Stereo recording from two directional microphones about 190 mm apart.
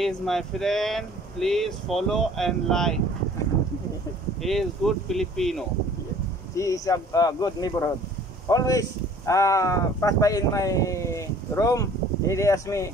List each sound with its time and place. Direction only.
0.0 s speech: centre (ahead or behind)
4.4 s speech: centre (ahead or behind)
6.5 s speech: 15° left (ahead or behind)